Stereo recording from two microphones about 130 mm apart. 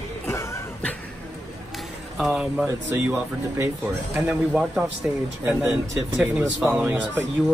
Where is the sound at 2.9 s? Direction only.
20° right (ahead or behind).